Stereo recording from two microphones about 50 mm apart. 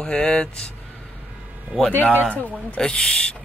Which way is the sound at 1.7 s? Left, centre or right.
Centre.